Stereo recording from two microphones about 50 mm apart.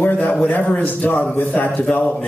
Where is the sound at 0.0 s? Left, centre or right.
Left.